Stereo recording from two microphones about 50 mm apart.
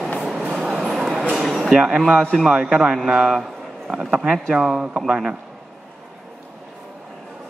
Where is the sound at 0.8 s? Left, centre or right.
Centre.